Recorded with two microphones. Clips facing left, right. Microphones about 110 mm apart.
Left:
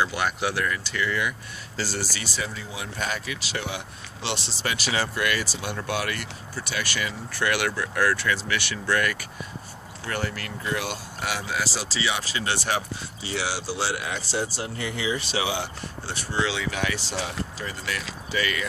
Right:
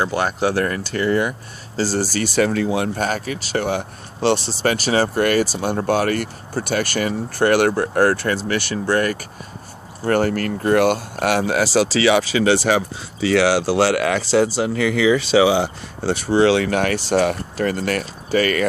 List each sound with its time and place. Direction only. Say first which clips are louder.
0.0 s speech: right 6 dB; 35° right (ahead or behind)
2.2 s speech: right 15 dB; 65° right (ahead or behind)
3.0 s speech: right 8 dB; 45° right (ahead or behind)
10.0 s speech: right 13 dB; 50° right (ahead or behind)